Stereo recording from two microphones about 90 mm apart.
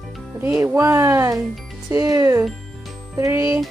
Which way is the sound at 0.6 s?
35° right (ahead or behind).